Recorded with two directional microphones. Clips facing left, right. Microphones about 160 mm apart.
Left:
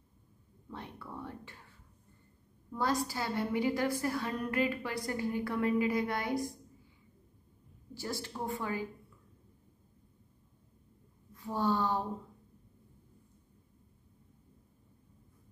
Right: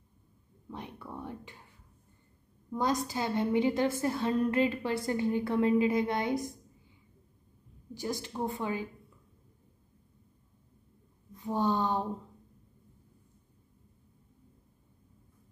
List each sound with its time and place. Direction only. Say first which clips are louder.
0.7 s a sound: right 2 dB; 15° right (ahead or behind)
2.7 s a woman's voice: right 2 dB; 20° right (ahead or behind)
7.9 s a woman's voice: right 4 dB; 15° right (ahead or behind)
11.3 s a woman's voice: right 2 dB; 20° right (ahead or behind)